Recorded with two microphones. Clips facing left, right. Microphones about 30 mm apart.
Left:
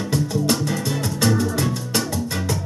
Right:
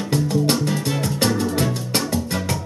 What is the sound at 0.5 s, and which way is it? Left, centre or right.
Music, right.